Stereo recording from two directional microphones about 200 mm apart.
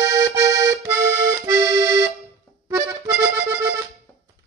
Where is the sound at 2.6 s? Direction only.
10° right (ahead or behind).